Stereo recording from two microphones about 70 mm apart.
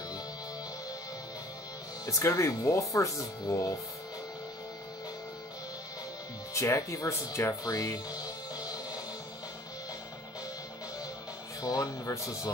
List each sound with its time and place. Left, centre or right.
2.0 s speech: left
6.5 s speech: left
7.6 s speech: left
8.6 s music: left
11.6 s speech: left